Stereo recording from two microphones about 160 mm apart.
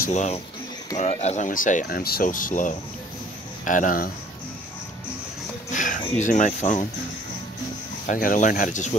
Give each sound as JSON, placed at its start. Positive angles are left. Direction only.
{"t": 0.1, "sound": "speech", "side_deg": 45}
{"t": 5.7, "sound": "speech", "side_deg": 55}
{"t": 8.1, "sound": "speech", "side_deg": 55}